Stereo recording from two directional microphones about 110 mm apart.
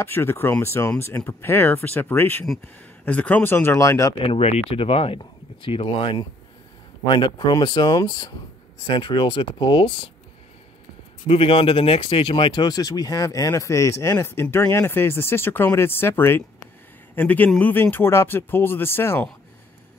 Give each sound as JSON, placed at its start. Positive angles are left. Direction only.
{"t": 0.0, "sound": "a man's voice", "side_deg": 20}
{"t": 4.2, "sound": "speech", "side_deg": 65}
{"t": 11.2, "sound": "a man's voice", "side_deg": 55}